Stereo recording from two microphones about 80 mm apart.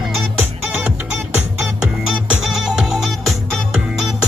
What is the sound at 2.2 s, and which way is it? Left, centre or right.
Music, centre.